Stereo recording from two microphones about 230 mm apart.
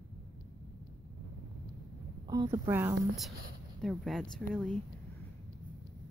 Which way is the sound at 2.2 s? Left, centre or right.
Centre.